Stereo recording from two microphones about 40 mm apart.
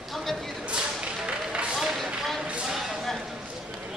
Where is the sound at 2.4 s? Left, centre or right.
Right.